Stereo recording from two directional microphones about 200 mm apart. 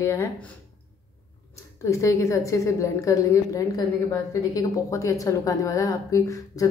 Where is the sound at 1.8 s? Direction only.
15° left (ahead or behind).